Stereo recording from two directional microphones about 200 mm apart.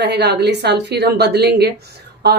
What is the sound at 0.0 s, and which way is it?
A woman's voice, 55° right (ahead or behind).